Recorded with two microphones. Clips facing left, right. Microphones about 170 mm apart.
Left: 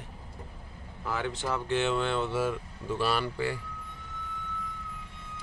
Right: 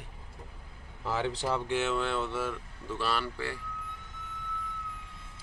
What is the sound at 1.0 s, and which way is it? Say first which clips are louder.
Speech: right 1 dB; 25° right (ahead or behind).